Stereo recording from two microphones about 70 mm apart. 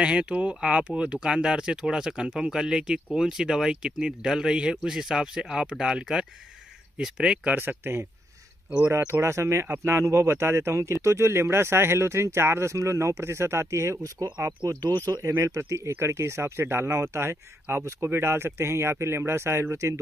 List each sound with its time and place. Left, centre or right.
0.0 s speech: centre
7.4 s speech: right
15.2 s speech: right